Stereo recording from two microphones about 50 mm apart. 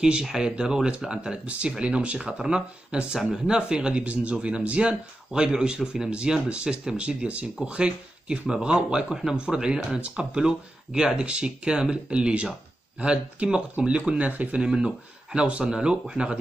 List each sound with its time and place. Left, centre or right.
0.0 s speech: centre; by 14.6 s right
14.6 s speech: centre